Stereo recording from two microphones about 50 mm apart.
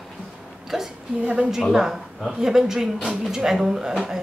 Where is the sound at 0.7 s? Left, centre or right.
Centre.